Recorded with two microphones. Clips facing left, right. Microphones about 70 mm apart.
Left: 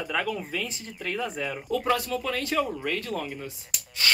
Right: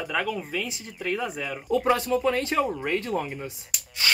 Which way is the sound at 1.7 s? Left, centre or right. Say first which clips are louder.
Right 4 dB; centre.